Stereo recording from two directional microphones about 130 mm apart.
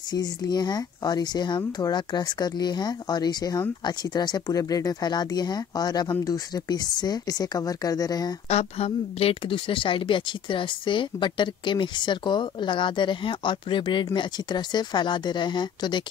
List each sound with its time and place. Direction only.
0.1 s speech: 35° left (ahead or behind)
8.5 s speech: 55° left (ahead or behind); by 16.0 s 35° left (ahead or behind)